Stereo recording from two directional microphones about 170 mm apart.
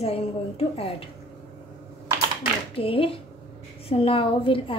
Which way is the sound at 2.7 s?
35° left (ahead or behind).